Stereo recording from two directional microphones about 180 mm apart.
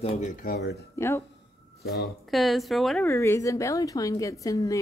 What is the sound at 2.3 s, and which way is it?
Speech, centre (ahead or behind).